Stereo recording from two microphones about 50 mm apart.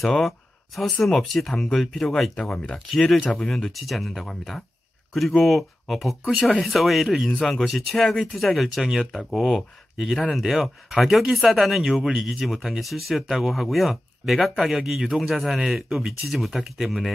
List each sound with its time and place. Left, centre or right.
0.0 s speech: centre
2.5 s speech: centre
3.7 s speech: centre
7.3 s speech: centre
8.8 s speech: centre